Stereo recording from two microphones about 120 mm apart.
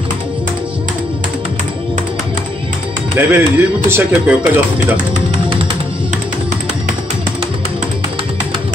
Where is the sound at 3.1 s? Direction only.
15° right (ahead or behind).